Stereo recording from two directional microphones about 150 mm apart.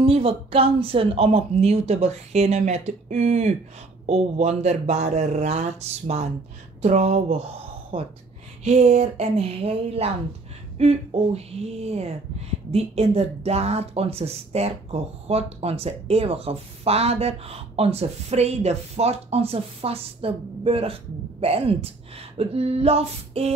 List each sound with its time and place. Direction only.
0.0 s speech: 40° right (ahead or behind)